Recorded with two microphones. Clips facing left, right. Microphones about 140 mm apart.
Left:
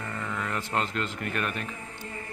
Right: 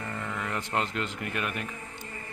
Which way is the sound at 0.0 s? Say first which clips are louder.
Left 1 dB; 10° right (ahead or behind).